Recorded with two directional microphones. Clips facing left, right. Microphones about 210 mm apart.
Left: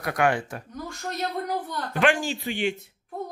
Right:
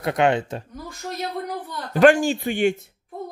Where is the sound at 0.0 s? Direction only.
25° right (ahead or behind).